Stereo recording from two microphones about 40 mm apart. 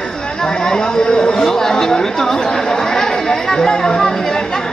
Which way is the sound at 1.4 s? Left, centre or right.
Centre.